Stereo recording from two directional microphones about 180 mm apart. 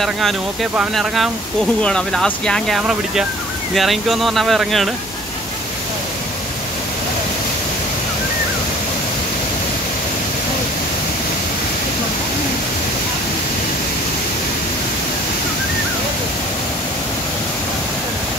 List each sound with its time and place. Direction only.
0.0 s speech: centre (ahead or behind)